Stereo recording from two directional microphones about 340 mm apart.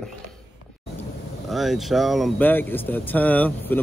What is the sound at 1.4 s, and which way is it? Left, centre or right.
Speech, centre.